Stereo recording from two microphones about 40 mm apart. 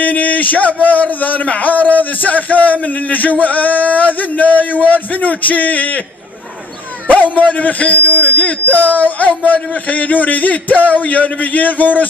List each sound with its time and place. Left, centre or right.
0.0 s a man's voice: left
7.1 s a man's voice: left